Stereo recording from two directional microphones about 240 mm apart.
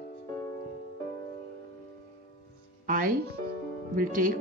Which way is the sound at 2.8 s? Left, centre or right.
Right.